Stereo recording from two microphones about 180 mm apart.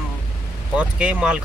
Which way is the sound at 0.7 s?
5° right (ahead or behind).